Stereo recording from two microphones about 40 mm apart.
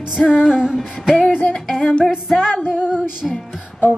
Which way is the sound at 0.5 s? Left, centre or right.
Centre.